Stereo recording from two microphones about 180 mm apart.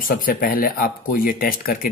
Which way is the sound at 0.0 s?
55° left (ahead or behind).